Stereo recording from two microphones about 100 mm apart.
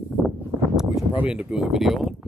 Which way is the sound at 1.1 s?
15° right (ahead or behind).